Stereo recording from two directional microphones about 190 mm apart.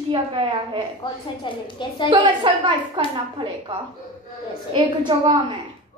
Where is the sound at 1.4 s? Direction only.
25° left (ahead or behind).